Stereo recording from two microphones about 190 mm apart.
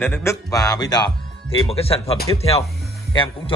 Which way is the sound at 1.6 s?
30° left (ahead or behind).